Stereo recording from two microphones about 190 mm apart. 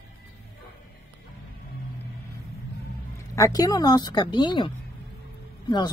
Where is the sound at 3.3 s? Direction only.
20° left (ahead or behind).